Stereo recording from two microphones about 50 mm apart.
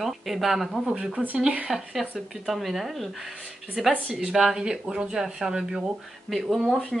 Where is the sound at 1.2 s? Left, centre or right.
Right.